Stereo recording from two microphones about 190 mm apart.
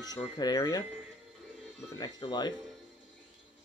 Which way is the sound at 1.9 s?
20° left (ahead or behind).